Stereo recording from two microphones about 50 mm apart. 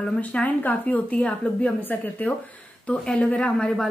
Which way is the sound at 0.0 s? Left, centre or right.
Left.